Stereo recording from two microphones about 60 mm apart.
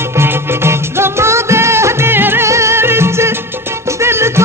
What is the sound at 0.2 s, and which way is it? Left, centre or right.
Music, right.